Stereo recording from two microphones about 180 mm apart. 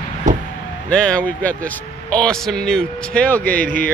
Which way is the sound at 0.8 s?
5° left (ahead or behind).